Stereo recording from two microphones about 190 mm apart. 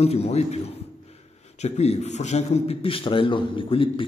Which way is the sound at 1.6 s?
35° left (ahead or behind).